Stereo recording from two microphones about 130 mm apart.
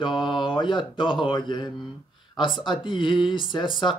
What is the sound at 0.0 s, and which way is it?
Speech, 35° left (ahead or behind).